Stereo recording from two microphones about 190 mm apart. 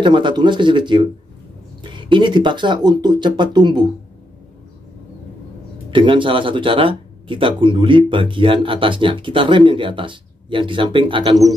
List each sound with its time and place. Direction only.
0.0 s speech: 25° right (ahead or behind)
5.9 s speech: 25° right (ahead or behind)